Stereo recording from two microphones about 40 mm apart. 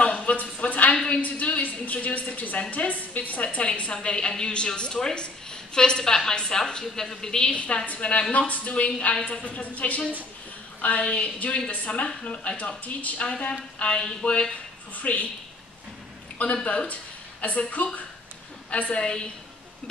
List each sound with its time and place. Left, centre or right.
0.0 s a sound: left
1.1 s a woman's voice: left; by 7.5 s centre
7.5 s a woman's voice: left
13.2 s a woman's voice: left
16.6 s a woman's voice: left